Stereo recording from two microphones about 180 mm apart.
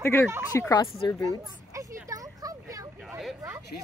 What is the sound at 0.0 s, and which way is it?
Speech, 15° left (ahead or behind).